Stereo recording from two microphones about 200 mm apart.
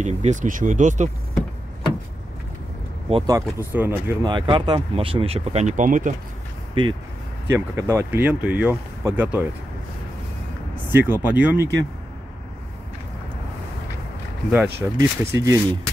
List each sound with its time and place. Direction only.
0.0 s speech: 35° right (ahead or behind)
3.1 s speech: 25° right (ahead or behind)
3.3 s speech: 10° right (ahead or behind); by 6.1 s 40° right (ahead or behind)
6.7 s speech: 25° right (ahead or behind)
7.5 s speech: 15° right (ahead or behind)
10.9 s speech: 10° right (ahead or behind)
14.5 s speech: 10° right (ahead or behind)